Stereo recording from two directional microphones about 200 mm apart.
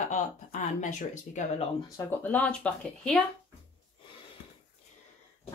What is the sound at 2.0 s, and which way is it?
Speech, 10° left (ahead or behind).